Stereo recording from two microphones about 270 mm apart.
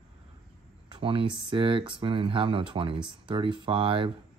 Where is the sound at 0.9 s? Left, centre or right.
Centre.